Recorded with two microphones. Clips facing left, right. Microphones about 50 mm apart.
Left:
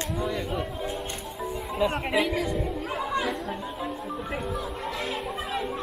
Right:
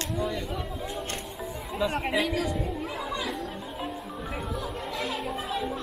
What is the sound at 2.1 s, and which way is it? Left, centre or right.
Speech, left.